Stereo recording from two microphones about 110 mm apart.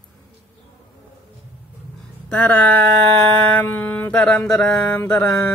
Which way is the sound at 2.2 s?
10° left (ahead or behind).